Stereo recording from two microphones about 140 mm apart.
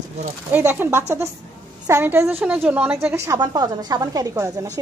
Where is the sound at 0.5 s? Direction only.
15° right (ahead or behind).